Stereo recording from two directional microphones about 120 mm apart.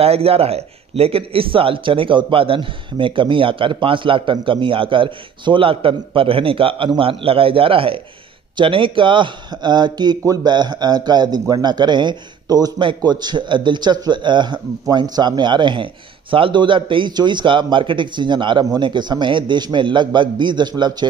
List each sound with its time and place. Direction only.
0.0 s a man's voice: 55° right (ahead or behind); by 21.1 s 35° right (ahead or behind)